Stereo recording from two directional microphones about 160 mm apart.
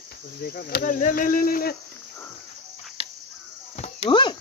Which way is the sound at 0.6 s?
75° left (ahead or behind).